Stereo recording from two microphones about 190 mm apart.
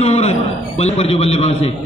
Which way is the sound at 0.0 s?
35° left (ahead or behind).